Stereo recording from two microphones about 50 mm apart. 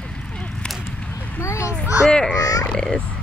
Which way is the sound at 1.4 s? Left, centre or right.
Left.